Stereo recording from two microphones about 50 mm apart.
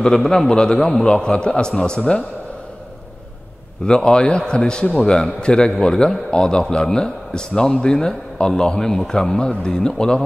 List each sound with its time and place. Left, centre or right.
0.0 s a man's voice: centre
3.8 s a man's voice: centre